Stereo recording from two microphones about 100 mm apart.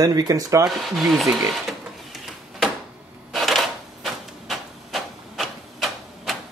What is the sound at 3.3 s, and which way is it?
Printer, centre (ahead or behind).